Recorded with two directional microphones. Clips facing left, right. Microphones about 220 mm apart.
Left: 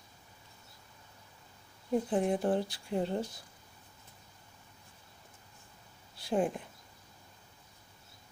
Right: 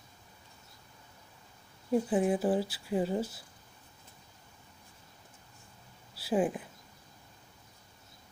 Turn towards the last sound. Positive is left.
turn(degrees=-5)  # may be behind; listen again after turning